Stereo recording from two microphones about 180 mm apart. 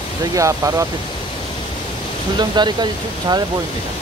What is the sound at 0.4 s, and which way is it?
Speech, 15° right (ahead or behind).